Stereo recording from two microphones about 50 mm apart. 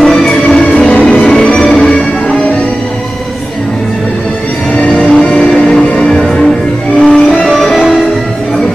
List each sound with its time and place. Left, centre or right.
0.0 s music: centre
4.7 s music: left; by 7.8 s centre